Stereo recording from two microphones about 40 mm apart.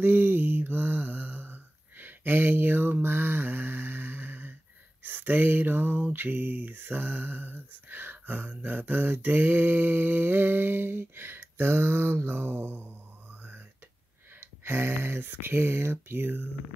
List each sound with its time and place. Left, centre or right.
0.0 s mantra: right
13.3 s a sound: right
14.4 s speech: right